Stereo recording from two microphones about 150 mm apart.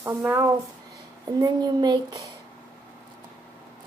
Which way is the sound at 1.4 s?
25° right (ahead or behind).